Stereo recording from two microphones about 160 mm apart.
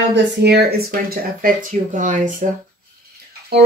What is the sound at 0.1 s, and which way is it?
Speech, 90° right.